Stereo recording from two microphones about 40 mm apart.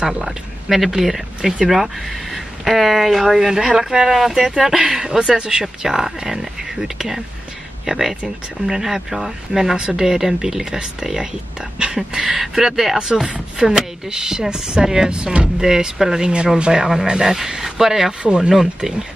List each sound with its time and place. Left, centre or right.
0.0 s speech: centre
16.8 s speech: centre
18.2 s speech: right
18.5 s speech: centre